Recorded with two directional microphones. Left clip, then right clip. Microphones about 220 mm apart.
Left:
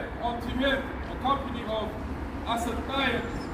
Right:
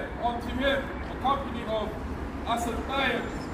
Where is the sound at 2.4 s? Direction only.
25° left (ahead or behind).